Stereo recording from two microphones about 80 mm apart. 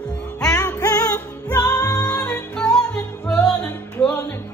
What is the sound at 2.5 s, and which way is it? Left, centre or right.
Music, centre.